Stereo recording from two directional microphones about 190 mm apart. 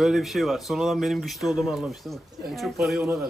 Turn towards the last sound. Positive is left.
turn(degrees=0)  # may be behind; listen again after turning